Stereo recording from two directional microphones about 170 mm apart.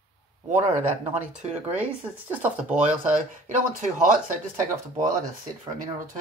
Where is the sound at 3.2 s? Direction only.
50° right (ahead or behind).